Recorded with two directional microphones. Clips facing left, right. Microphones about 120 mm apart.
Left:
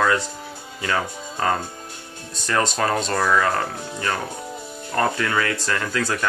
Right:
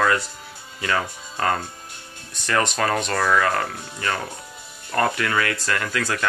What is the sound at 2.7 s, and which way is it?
Speech, 25° left (ahead or behind).